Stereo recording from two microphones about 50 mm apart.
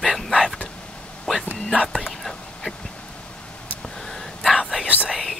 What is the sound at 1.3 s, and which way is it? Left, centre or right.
Speech, centre.